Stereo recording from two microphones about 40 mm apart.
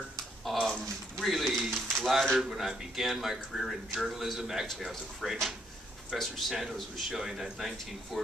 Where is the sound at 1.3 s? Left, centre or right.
Centre.